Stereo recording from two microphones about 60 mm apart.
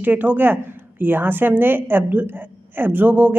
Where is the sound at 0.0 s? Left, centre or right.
Right.